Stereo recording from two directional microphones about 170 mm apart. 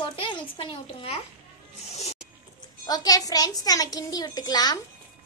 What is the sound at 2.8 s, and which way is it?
A woman's voice, 20° left (ahead or behind).